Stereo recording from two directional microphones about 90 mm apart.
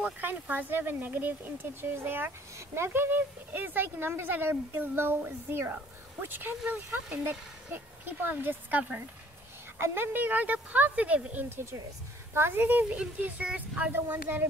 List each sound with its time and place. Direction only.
0.0 s speech: 20° right (ahead or behind)